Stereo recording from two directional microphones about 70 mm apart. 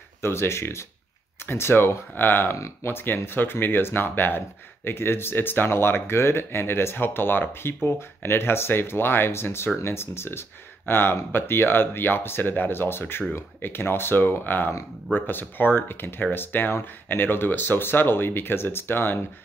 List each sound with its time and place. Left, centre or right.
0.2 s speech: left